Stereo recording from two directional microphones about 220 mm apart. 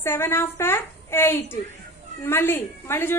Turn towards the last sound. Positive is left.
turn(degrees=10)  # may be behind; listen again after turning